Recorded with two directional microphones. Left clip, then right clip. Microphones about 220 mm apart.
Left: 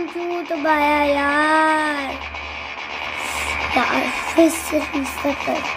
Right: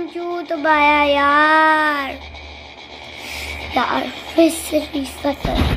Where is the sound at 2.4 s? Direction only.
50° left (ahead or behind).